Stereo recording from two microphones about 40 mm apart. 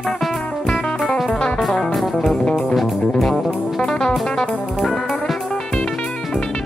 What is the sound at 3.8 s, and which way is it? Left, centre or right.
Music, centre.